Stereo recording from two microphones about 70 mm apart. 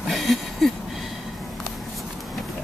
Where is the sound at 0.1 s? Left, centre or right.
Centre.